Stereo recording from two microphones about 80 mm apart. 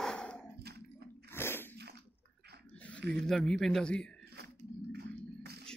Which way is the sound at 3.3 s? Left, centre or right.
Centre.